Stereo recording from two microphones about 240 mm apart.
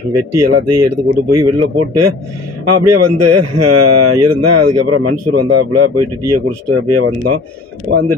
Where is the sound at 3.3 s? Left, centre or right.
Right.